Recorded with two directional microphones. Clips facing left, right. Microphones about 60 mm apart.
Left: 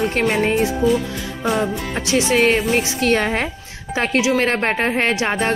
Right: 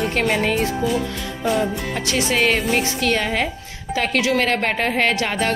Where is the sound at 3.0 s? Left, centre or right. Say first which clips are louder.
Left 2 dB; left.